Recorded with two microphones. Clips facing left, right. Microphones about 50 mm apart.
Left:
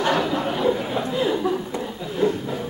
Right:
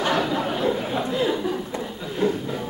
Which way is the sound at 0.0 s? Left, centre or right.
Centre.